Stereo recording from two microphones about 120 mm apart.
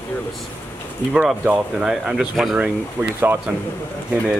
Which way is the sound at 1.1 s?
5° right (ahead or behind).